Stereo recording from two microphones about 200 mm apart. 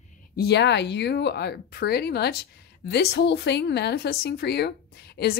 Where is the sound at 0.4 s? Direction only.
60° left (ahead or behind).